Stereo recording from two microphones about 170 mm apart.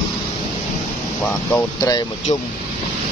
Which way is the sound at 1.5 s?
15° left (ahead or behind).